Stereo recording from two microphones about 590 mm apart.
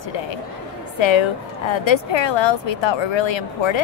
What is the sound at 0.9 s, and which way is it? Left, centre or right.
Speech, left.